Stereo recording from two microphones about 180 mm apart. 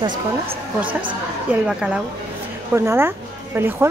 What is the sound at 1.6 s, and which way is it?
A woman's voice, 5° right (ahead or behind).